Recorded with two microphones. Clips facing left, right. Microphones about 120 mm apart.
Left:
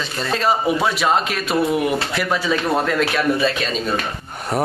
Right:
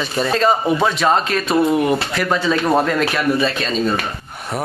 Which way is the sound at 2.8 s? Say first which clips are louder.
Right 1 dB; centre (ahead or behind).